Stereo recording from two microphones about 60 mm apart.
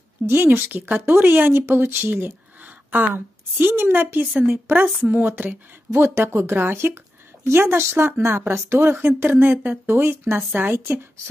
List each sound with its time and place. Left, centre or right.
0.3 s speech: right
5.9 s speech: right